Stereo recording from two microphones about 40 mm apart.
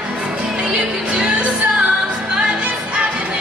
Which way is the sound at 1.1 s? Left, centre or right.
Centre.